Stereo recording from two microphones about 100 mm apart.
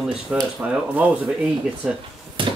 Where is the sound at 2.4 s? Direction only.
55° right (ahead or behind).